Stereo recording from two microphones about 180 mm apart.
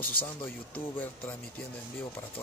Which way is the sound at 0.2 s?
30° left (ahead or behind).